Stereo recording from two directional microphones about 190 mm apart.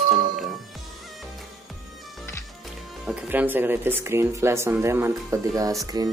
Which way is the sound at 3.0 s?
10° right (ahead or behind).